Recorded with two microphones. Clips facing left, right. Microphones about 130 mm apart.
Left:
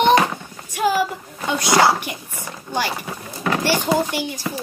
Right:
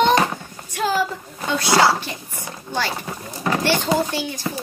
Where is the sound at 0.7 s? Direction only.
15° left (ahead or behind).